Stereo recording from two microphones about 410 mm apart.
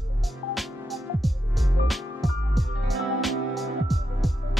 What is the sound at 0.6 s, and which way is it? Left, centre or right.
Music, centre.